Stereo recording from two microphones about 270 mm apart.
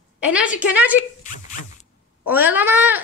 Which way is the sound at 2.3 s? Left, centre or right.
Centre.